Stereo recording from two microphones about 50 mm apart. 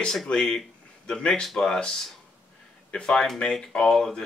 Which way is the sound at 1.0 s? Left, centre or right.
Left.